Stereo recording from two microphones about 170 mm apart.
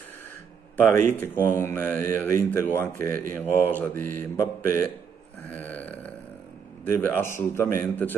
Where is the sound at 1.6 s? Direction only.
10° left (ahead or behind).